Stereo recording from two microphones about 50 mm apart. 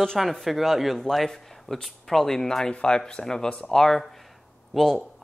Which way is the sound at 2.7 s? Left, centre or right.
Left.